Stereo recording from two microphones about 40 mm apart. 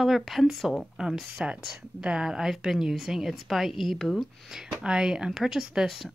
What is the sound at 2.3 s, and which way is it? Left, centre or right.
Speech, centre.